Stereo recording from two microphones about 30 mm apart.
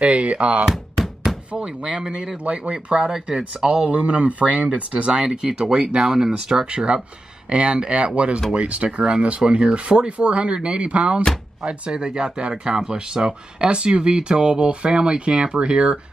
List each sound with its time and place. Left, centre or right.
0.0 s speech: right
1.3 s knock: centre
1.8 s speech: right
2.4 s speech: right
3.0 s speech: centre
3.3 s speech: right; by 6.6 s centre
6.6 s speech: right
8.8 s speech: right
9.8 s speech: right
12.0 s speech: right